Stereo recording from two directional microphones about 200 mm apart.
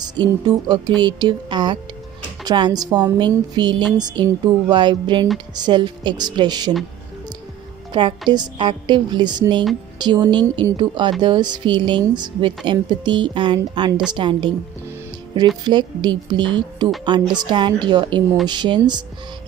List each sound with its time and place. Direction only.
0.0 s speech: 20° right (ahead or behind)
8.3 s speech: 20° right (ahead or behind)